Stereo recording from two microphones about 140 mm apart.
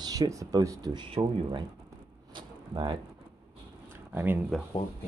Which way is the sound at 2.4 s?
35° right (ahead or behind).